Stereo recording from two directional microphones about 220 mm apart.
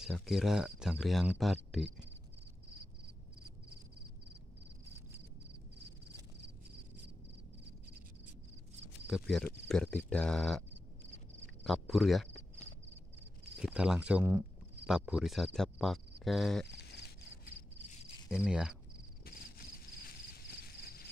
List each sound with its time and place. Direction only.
0.0 s speech: centre (ahead or behind)
9.0 s speech: centre (ahead or behind)
11.6 s speech: centre (ahead or behind)
13.6 s speech: 5° right (ahead or behind)
16.6 s a sound: 50° left (ahead or behind)
18.3 s speech: centre (ahead or behind)
19.2 s a sound: 40° left (ahead or behind)